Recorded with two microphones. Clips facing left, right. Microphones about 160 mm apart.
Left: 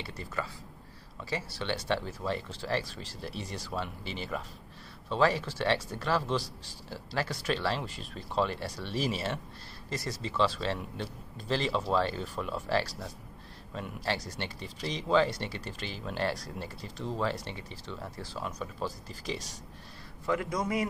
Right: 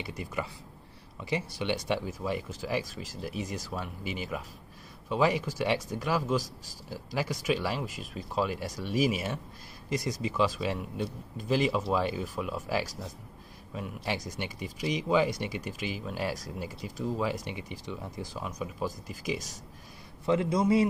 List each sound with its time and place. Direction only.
0.0 s speech: 15° right (ahead or behind)
20.2 s a man's voice: 25° right (ahead or behind)